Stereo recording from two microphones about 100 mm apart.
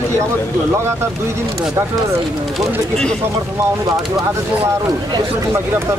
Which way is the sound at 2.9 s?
5° left (ahead or behind).